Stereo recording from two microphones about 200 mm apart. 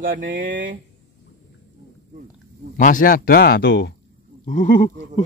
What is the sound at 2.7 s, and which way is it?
Speech, 40° left (ahead or behind).